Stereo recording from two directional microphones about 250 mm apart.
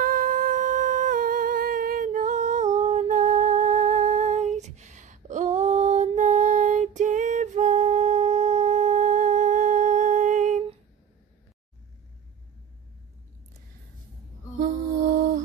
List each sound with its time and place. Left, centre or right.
0.0 s humming: right